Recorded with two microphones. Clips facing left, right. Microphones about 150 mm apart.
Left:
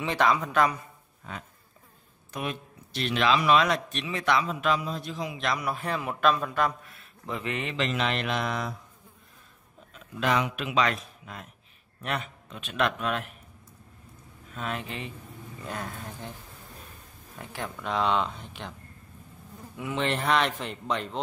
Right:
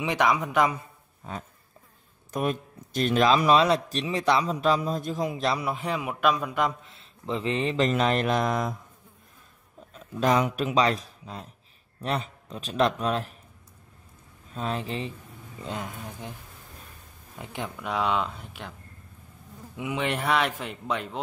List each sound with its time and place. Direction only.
0.0 s a man's voice: 15° right (ahead or behind)
2.3 s a man's voice: 45° right (ahead or behind)
5.5 s a man's voice: 25° right (ahead or behind)
5.8 s a man's voice: 15° right (ahead or behind); by 8.7 s 45° right (ahead or behind)
9.9 s a man's voice: 35° right (ahead or behind)
14.5 s a man's voice: 30° right (ahead or behind)
15.6 s a man's voice: 20° right (ahead or behind)
17.4 s a man's voice: 15° right (ahead or behind)
19.8 s a man's voice: 10° right (ahead or behind)